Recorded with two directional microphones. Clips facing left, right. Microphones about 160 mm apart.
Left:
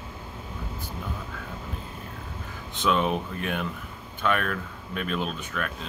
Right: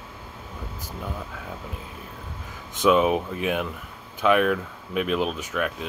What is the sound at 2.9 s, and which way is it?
Speech, 10° right (ahead or behind).